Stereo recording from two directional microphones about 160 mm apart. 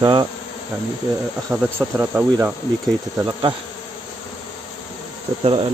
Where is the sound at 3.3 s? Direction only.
30° right (ahead or behind).